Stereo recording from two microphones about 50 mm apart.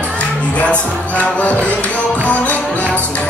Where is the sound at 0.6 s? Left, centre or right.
Left.